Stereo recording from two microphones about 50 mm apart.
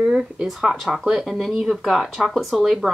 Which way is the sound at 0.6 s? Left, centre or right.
Centre.